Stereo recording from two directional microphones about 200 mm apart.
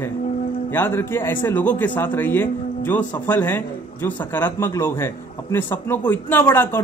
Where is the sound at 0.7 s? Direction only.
10° left (ahead or behind).